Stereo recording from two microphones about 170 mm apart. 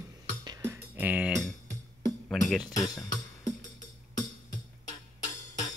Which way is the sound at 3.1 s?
20° left (ahead or behind).